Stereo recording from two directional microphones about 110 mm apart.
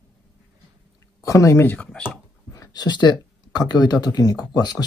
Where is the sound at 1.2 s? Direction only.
30° left (ahead or behind); by 2.2 s 10° left (ahead or behind).